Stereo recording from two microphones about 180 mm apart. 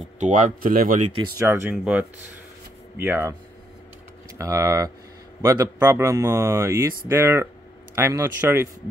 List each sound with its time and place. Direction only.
0.2 s speech: 45° right (ahead or behind)
1.5 s a man's voice: 10° right (ahead or behind)
4.4 s a man's voice: 15° right (ahead or behind)